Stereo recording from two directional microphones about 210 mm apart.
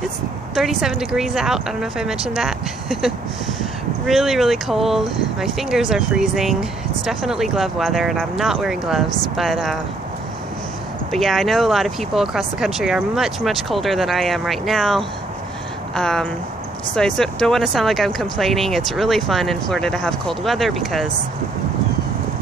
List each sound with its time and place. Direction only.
0.6 s speech: centre (ahead or behind)
11.1 s speech: centre (ahead or behind)